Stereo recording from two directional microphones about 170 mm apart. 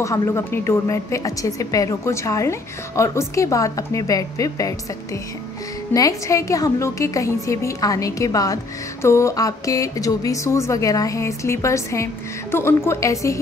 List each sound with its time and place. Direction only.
0.0 s a woman's voice: 15° left (ahead or behind)